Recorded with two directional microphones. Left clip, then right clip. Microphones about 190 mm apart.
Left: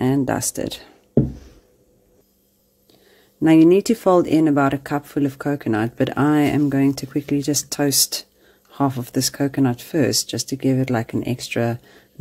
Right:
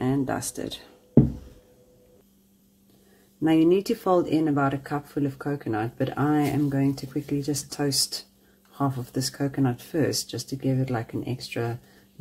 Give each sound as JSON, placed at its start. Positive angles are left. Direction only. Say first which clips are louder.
{"t": 0.0, "sound": "a sound", "louder": "left 6 dB", "side_deg": 50}
{"t": 0.6, "sound": "speech", "louder": "left 7 dB", "side_deg": 45}
{"t": 3.3, "sound": "speech", "louder": "left 7 dB", "side_deg": 40}
{"t": 10.2, "sound": "speech", "louder": "left 8 dB", "side_deg": 50}